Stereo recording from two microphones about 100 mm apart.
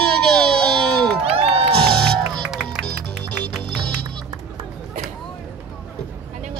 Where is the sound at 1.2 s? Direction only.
75° right (ahead or behind).